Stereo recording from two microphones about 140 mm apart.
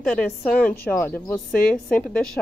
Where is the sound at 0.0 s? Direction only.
5° left (ahead or behind).